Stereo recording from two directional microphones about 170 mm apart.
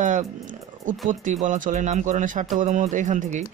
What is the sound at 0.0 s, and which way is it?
Wild animals, 50° right (ahead or behind).